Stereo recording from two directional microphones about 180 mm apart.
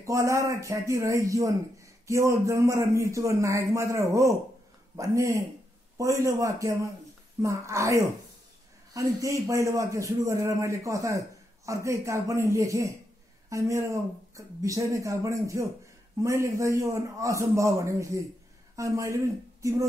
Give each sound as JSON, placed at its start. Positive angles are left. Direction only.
{"t": 0.0, "sound": "a man's voice", "side_deg": -15}